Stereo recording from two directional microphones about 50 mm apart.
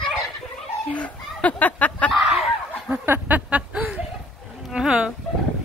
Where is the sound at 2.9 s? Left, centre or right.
Right.